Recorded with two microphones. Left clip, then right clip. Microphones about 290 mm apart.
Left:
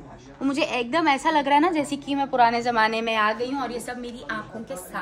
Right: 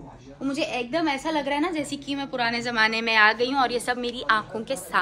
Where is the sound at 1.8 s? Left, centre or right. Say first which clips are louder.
Left 2 dB; left.